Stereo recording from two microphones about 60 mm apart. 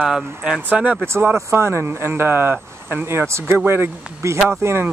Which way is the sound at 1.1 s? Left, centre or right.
Right.